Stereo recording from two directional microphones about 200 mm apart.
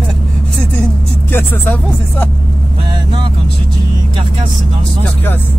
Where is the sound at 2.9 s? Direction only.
25° right (ahead or behind).